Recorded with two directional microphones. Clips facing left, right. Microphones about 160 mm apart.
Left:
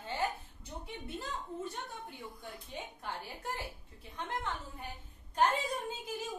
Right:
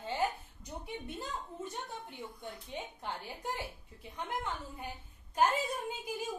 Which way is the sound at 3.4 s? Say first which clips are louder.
Right 2 dB; 15° right (ahead or behind).